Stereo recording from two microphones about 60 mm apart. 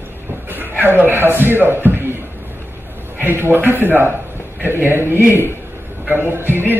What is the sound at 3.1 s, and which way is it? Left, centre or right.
A man's voice, right.